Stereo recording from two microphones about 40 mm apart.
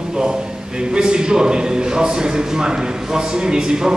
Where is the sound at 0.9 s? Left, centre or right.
Right.